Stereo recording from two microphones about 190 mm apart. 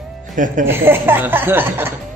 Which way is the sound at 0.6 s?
10° right (ahead or behind).